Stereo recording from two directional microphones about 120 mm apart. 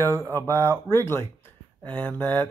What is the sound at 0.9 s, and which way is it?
Speech, 20° left (ahead or behind).